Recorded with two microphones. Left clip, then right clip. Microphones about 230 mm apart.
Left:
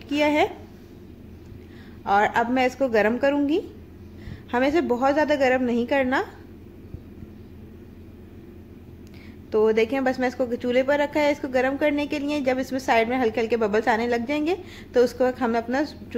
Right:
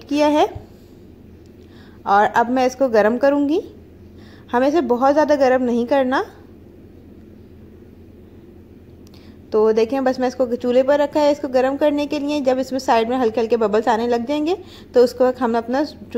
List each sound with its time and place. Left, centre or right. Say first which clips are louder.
0.1 s a woman's voice: right 5 dB; centre
2.0 s a woman's voice: right 5 dB; centre
9.5 s a woman's voice: right 4 dB; centre